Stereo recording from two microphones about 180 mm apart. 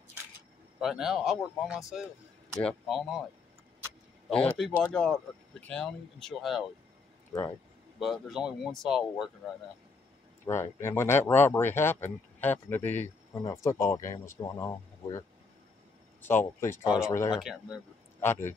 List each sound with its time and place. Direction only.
0.7 s speech: 5° right (ahead or behind)
4.3 s speech: 5° left (ahead or behind)
8.0 s speech: centre (ahead or behind)
10.4 s speech: 15° left (ahead or behind)
17.4 s speech: 5° right (ahead or behind)
18.2 s speech: 10° left (ahead or behind)